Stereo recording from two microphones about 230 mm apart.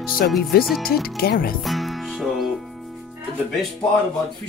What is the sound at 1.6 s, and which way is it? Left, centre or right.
Music, centre.